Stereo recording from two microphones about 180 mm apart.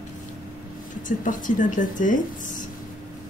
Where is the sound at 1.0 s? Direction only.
45° left (ahead or behind).